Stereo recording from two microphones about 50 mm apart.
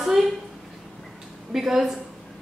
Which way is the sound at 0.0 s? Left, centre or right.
Centre.